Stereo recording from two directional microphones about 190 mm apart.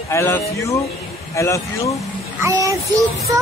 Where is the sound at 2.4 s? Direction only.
15° right (ahead or behind).